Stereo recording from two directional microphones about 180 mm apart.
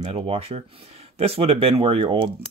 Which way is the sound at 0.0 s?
35° right (ahead or behind).